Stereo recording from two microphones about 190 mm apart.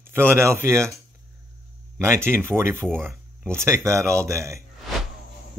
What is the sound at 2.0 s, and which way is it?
Speech, 15° right (ahead or behind).